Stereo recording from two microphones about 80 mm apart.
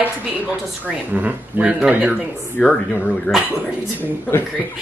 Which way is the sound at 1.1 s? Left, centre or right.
Centre.